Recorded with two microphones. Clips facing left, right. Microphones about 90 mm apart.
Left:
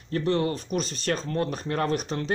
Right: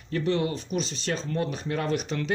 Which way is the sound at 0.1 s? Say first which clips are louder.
Left 1 dB; 40° left (ahead or behind).